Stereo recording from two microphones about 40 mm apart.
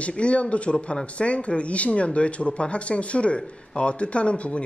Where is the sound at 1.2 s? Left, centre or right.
Left.